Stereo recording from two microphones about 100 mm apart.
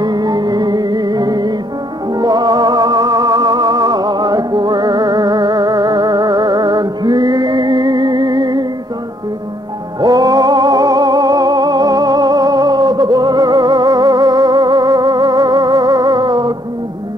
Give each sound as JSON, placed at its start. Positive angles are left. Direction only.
{"t": 0.0, "sound": "music", "side_deg": -45}
{"t": 9.9, "sound": "music", "side_deg": -40}